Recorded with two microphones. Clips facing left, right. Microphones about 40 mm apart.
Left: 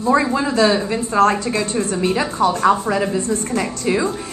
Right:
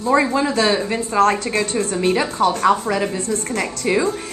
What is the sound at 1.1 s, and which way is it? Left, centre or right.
Speech, right.